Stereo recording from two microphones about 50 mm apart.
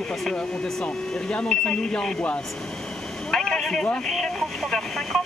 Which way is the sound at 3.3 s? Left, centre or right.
Centre.